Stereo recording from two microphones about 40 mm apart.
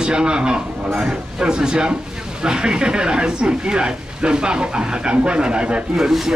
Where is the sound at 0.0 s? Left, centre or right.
Right.